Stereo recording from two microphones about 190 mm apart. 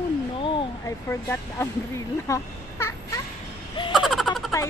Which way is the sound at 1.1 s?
15° left (ahead or behind).